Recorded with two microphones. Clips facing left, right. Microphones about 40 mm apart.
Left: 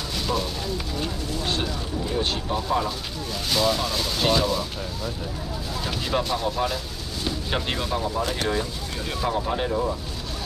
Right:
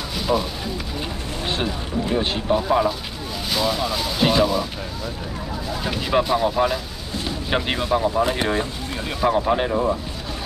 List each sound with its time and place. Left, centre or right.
0.1 s a sound: centre
1.5 s speech: right
3.4 s speech: centre
5.9 s speech: centre